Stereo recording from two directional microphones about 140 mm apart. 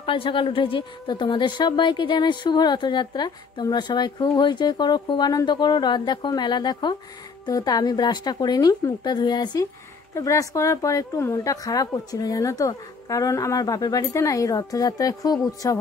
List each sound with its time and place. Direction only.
0.0 s a woman's voice: 40° left (ahead or behind)